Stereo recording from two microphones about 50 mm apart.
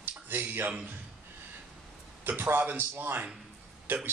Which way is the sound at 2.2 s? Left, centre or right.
Right.